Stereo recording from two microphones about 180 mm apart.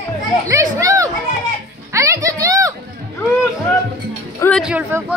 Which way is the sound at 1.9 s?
15° right (ahead or behind).